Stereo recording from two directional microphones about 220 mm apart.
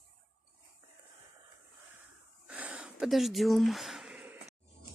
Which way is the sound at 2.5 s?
5° right (ahead or behind).